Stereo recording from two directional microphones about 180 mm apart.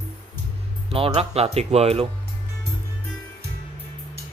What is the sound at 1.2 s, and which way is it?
Speech, 35° right (ahead or behind).